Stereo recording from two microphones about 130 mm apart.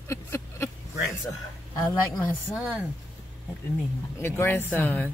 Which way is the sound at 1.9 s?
15° left (ahead or behind).